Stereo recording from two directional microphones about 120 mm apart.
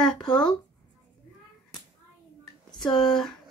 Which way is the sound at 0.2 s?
5° left (ahead or behind).